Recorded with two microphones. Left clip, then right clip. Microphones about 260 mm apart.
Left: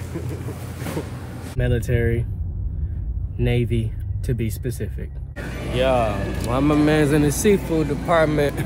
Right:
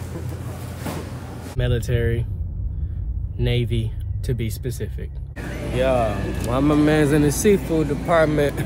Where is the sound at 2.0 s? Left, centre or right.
Right.